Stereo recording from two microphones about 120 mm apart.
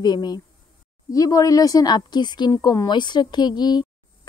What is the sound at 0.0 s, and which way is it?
A woman's voice, 35° left (ahead or behind).